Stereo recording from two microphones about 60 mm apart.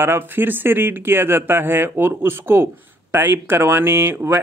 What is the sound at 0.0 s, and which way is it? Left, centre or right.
Speech, right.